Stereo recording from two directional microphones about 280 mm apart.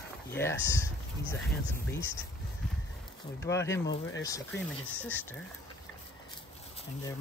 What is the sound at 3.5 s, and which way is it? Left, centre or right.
Speech, centre.